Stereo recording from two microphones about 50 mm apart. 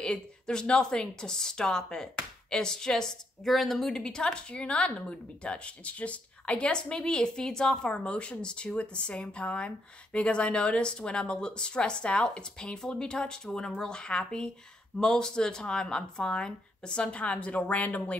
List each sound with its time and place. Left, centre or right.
0.0 s speech: centre